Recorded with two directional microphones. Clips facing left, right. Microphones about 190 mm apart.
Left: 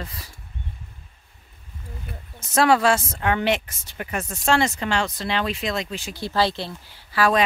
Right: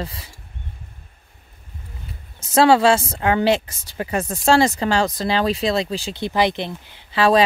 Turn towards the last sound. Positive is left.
turn(degrees=-25)  # may be behind; listen again after turning